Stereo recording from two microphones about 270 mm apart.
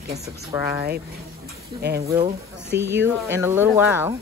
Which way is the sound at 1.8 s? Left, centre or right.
Right.